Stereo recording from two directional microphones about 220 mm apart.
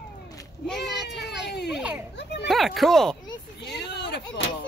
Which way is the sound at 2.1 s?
50° left (ahead or behind).